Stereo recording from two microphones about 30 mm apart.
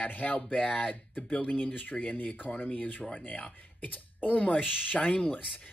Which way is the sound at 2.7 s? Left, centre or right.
Left.